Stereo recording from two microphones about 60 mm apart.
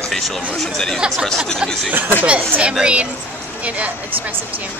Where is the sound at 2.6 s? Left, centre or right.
Centre.